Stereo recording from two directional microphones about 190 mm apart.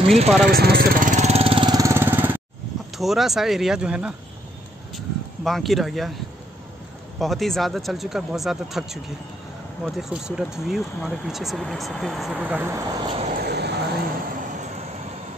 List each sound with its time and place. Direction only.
0.0 s speech: 30° right (ahead or behind)
0.5 s vehicle: 55° right (ahead or behind); by 2.4 s 10° right (ahead or behind)
3.0 s speech: centre (ahead or behind)
7.2 s speech: centre (ahead or behind)
13.1 s vehicle: 35° right (ahead or behind)
13.5 s vehicle: 60° right (ahead or behind)